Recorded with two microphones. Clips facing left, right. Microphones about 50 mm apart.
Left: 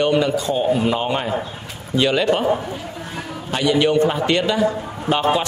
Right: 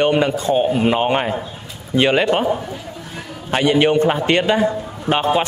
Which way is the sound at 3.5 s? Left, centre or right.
Right.